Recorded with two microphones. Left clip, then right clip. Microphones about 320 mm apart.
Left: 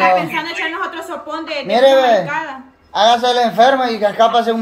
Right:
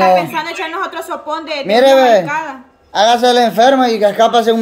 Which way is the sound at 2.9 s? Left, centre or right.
Right.